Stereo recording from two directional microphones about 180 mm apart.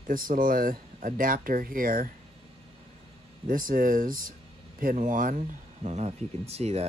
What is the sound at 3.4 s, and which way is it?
Speech, 50° right (ahead or behind).